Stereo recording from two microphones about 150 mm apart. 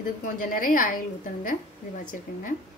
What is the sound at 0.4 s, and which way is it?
A woman's voice, 65° left (ahead or behind).